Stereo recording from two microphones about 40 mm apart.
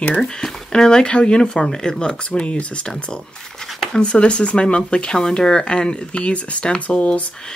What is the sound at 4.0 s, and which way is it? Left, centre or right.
Speech, left.